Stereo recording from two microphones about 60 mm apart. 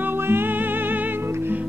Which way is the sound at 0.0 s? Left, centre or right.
Right.